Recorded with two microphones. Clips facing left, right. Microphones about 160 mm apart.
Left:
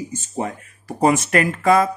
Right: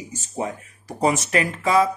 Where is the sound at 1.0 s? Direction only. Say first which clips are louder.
Left 4 dB; 55° left (ahead or behind).